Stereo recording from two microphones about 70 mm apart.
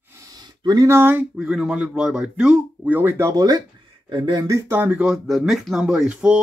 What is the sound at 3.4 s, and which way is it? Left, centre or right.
Speech, right.